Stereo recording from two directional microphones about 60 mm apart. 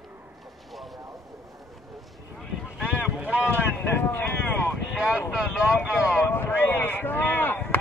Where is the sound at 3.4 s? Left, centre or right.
Left.